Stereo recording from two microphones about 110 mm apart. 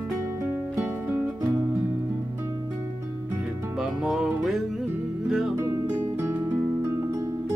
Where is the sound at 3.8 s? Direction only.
5° right (ahead or behind).